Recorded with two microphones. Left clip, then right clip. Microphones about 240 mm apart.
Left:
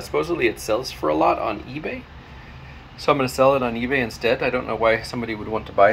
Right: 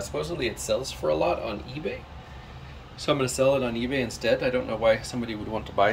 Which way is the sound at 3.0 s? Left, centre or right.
Centre.